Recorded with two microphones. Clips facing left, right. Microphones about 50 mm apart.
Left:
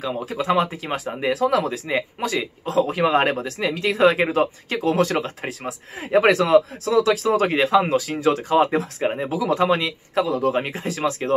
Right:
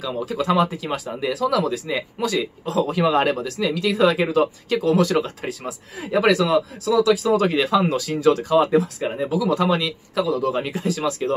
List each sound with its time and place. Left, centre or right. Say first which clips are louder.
0.0 s speech: right 1 dB; left